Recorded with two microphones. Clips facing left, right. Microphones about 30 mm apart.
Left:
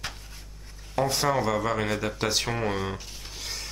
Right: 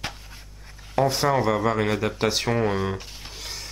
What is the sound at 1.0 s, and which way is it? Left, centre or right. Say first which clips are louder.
Speech: right 4 dB; centre.